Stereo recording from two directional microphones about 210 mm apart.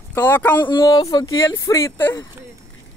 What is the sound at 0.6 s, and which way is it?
Speech, 20° left (ahead or behind).